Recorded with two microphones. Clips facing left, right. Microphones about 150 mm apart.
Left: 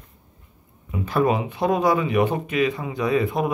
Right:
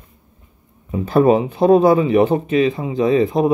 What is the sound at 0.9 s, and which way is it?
Speech, 35° right (ahead or behind).